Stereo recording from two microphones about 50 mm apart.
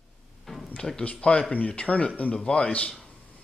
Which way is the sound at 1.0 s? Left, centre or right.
Left.